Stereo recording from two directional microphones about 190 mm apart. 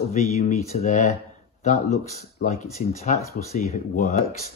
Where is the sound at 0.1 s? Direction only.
40° left (ahead or behind).